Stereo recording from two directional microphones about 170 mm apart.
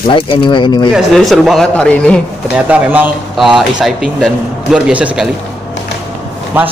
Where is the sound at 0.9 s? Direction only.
Centre (ahead or behind).